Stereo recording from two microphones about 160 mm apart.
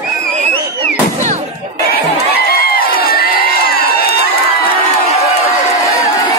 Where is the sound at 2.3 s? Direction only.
70° left (ahead or behind).